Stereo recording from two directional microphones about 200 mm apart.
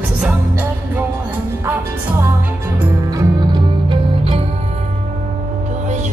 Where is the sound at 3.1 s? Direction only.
25° right (ahead or behind).